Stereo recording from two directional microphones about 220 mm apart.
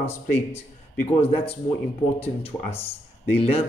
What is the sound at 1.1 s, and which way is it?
Speech, 25° left (ahead or behind).